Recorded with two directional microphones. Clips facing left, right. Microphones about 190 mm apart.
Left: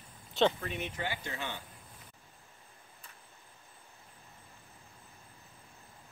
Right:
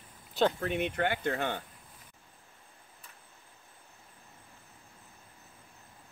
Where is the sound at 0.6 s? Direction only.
60° right (ahead or behind).